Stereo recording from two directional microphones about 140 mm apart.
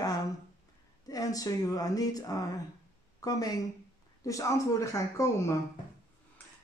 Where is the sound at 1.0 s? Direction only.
25° left (ahead or behind).